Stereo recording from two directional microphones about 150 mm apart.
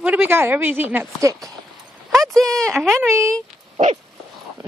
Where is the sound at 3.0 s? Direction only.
20° right (ahead or behind).